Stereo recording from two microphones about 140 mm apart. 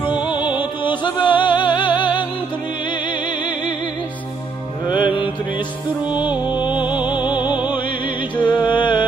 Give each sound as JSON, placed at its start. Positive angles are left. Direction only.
{"t": 0.3, "sound": "music", "side_deg": 35}
{"t": 4.8, "sound": "music", "side_deg": 35}
{"t": 6.3, "sound": "music", "side_deg": -15}
{"t": 6.6, "sound": "music", "side_deg": 35}